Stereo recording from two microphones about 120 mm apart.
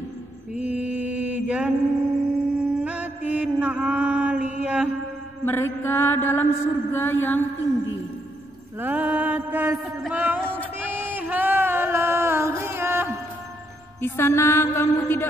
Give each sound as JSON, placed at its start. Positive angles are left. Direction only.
{"t": 0.6, "sound": "mantra", "side_deg": -10}
{"t": 5.4, "sound": "mantra", "side_deg": 20}
{"t": 8.7, "sound": "a sound", "side_deg": -15}
{"t": 14.0, "sound": "music", "side_deg": 20}